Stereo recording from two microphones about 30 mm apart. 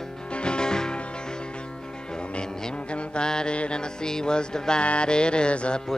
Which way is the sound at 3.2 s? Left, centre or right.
Left.